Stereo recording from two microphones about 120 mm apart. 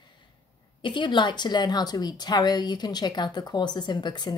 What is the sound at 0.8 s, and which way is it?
A woman's voice, 40° left (ahead or behind).